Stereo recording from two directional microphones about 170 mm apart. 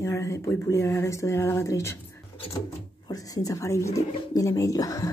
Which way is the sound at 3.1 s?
20° left (ahead or behind).